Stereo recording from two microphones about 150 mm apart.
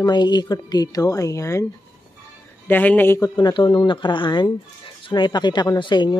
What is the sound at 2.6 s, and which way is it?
Speech, 10° left (ahead or behind).